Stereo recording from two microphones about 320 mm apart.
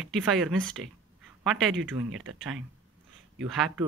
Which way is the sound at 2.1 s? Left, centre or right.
Right.